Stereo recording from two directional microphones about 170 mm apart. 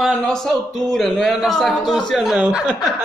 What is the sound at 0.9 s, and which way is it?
A man's voice, centre (ahead or behind).